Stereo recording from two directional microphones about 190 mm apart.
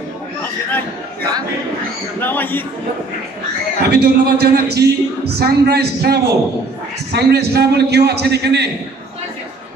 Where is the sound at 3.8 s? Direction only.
60° right (ahead or behind).